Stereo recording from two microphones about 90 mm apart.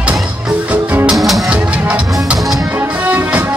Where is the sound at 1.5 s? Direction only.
15° right (ahead or behind).